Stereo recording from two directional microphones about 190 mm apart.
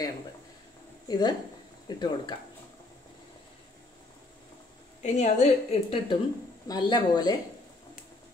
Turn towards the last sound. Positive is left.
turn(degrees=20)  # may be behind; listen again after turning